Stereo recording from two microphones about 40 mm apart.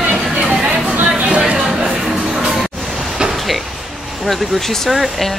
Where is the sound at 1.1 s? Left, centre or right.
Right.